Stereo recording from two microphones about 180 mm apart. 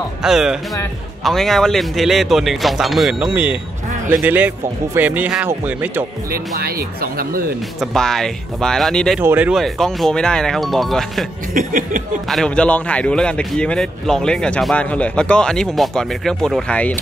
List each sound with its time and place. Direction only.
0.2 s a man's voice: 5° right (ahead or behind)
6.3 s speech: 55° right (ahead or behind)
7.8 s a man's voice: centre (ahead or behind)
9.2 s a man's voice: 10° right (ahead or behind)
11.5 s chuckle: 45° right (ahead or behind)
12.3 s a man's voice: 5° left (ahead or behind)